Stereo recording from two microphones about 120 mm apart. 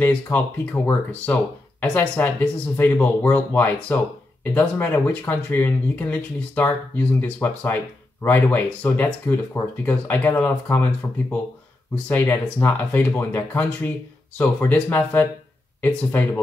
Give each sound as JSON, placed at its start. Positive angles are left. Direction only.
{"t": 0.0, "sound": "speech", "side_deg": 15}